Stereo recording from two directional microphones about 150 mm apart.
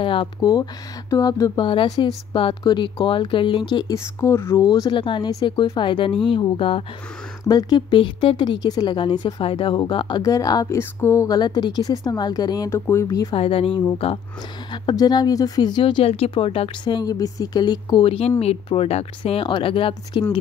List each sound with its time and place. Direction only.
0.0 s a woman's voice: 35° left (ahead or behind); by 4.6 s 15° left (ahead or behind)
4.6 s speech: 30° left (ahead or behind)
7.4 s a woman's voice: 25° left (ahead or behind)
13.3 s a woman's voice: 40° left (ahead or behind)